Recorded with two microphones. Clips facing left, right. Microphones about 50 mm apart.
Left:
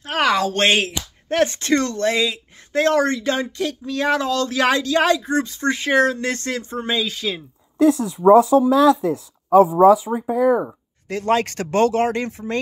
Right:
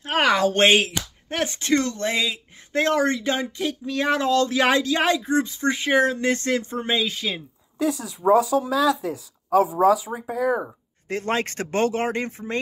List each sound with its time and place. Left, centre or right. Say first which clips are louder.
0.0 s a sound: left 1 dB; right
0.6 s speech: even; centre
7.8 s speech: left 8 dB; left
11.1 s speech: left 5 dB; right